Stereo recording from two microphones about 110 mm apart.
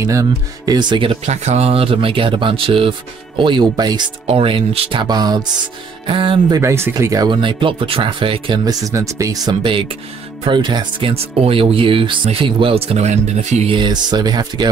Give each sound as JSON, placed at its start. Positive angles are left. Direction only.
{"t": 0.0, "sound": "speech", "side_deg": -30}
{"t": 1.2, "sound": "speech", "side_deg": -90}
{"t": 4.3, "sound": "speech", "side_deg": -60}
{"t": 5.0, "sound": "speech", "side_deg": -40}
{"t": 6.0, "sound": "speech", "side_deg": -50}
{"t": 6.6, "sound": "speech", "side_deg": -25}
{"t": 7.2, "sound": "speech", "side_deg": -45}
{"t": 8.6, "sound": "speech", "side_deg": -35}
{"t": 9.6, "sound": "speech", "side_deg": -50}
{"t": 13.7, "sound": "speech", "side_deg": -45}